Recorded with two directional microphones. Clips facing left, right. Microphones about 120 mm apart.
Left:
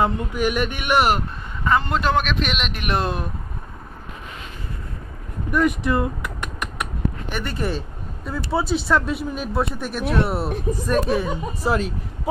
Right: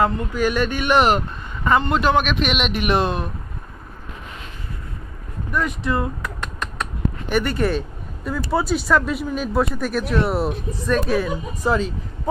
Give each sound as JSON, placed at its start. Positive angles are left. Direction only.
{"t": 0.0, "sound": "speech", "side_deg": 20}
{"t": 1.6, "sound": "speech", "side_deg": -5}
{"t": 5.9, "sound": "typing", "side_deg": 15}
{"t": 7.2, "sound": "speech", "side_deg": 0}